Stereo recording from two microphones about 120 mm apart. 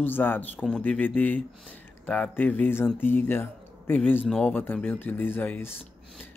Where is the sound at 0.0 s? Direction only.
15° left (ahead or behind).